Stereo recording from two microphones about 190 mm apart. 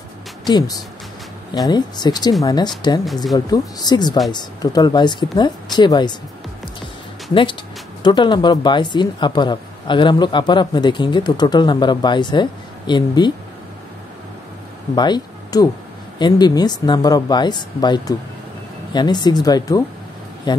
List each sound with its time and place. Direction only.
0.5 s speech: 20° left (ahead or behind)
8.0 s speech: 25° left (ahead or behind)
15.0 s speech: 20° left (ahead or behind)